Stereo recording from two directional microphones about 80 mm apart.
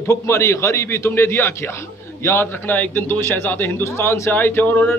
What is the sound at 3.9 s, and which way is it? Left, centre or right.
A man's voice, left.